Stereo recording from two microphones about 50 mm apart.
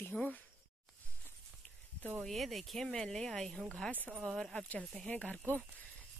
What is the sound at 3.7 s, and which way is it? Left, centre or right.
Speech, left.